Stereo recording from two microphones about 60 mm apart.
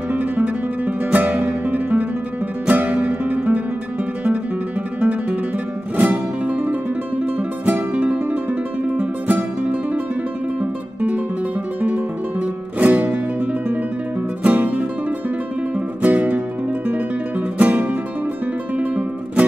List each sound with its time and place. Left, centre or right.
0.1 s music: right
5.9 s music: right
17.6 s music: right